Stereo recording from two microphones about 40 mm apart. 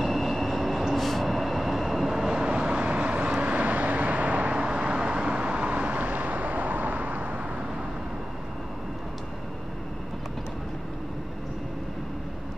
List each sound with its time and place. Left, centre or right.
0.0 s train: centre
2.1 s vehicle: centre
2.5 s vehicle: right
6.0 s vehicle: right